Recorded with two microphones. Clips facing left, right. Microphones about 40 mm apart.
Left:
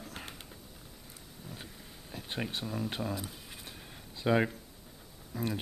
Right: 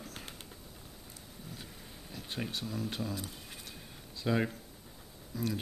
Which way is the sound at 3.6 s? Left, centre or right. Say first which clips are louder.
Left 1 dB; centre.